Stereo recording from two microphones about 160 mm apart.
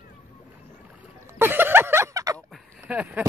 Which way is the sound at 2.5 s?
5° right (ahead or behind).